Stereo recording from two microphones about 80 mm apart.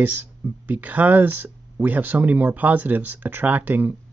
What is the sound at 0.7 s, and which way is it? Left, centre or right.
Speech, right.